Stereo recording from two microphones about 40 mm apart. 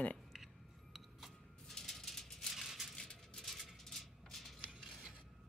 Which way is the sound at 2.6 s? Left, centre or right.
Centre.